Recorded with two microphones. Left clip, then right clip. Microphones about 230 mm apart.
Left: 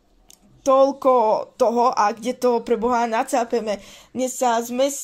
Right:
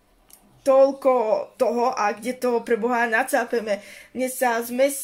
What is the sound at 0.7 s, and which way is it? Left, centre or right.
Speech, left.